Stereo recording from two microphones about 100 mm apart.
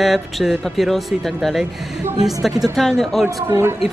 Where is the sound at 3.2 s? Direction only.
30° right (ahead or behind).